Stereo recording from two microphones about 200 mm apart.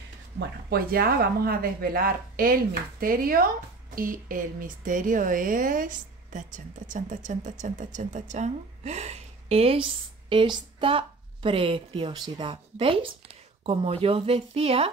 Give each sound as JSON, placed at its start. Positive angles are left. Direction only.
{"t": 0.4, "sound": "a woman's voice", "side_deg": -50}